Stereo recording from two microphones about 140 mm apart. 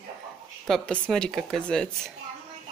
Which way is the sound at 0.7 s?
5° left (ahead or behind).